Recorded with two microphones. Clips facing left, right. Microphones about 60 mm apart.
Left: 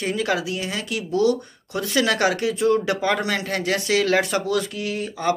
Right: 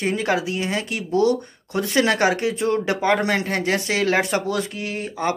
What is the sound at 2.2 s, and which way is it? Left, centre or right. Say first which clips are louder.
Speech: even; right.